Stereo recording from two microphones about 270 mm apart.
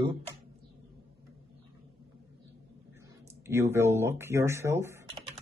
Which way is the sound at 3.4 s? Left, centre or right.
Centre.